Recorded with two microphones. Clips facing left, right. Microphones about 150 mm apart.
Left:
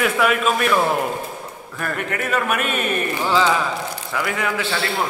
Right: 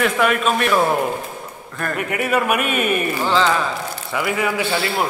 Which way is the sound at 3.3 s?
10° left (ahead or behind).